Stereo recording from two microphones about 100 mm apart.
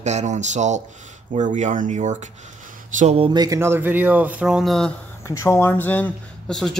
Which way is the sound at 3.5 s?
25° right (ahead or behind).